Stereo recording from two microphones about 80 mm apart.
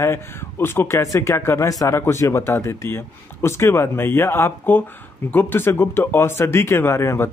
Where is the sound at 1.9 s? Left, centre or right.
Left.